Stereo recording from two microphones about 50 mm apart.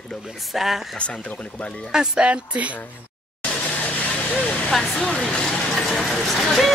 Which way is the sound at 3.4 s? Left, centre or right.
Left.